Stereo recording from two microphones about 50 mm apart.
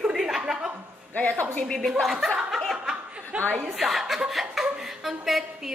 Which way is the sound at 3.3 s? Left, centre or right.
Centre.